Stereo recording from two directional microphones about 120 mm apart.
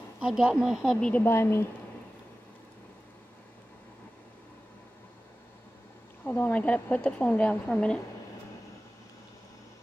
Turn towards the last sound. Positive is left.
turn(degrees=10)  # may be behind; listen again after turning